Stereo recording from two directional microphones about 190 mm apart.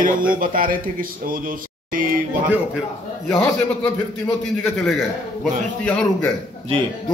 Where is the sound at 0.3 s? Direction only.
45° right (ahead or behind).